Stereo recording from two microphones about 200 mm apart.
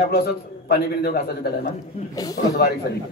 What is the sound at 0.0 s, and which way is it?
A man's voice, 50° left (ahead or behind).